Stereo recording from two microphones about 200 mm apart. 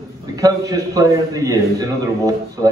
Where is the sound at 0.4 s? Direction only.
15° right (ahead or behind).